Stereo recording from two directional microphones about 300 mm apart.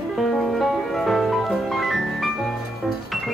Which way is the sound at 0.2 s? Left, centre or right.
Centre.